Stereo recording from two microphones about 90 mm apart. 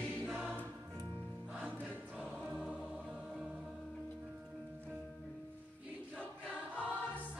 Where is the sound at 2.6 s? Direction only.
15° right (ahead or behind).